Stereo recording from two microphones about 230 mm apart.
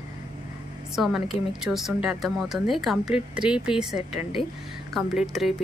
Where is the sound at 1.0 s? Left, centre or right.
Centre.